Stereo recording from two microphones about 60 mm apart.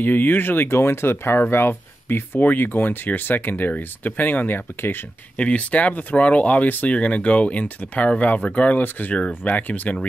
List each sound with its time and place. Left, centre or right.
0.0 s speech: left
5.4 s speech: left